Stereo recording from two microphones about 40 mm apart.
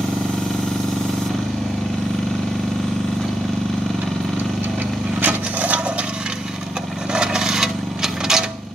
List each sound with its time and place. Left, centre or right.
5.2 s wood: right
7.1 s rub: centre